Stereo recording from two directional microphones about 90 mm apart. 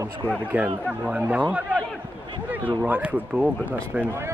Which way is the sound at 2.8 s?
20° right (ahead or behind).